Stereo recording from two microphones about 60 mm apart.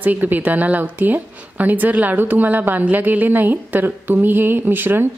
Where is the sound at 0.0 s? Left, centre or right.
Right.